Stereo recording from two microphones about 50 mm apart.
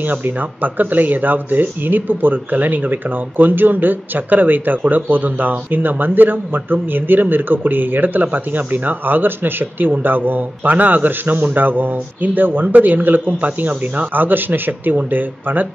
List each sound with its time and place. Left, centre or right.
0.0 s speech: right